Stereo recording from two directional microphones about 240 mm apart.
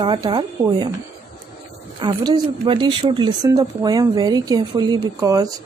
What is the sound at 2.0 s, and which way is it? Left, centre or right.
Speech, centre.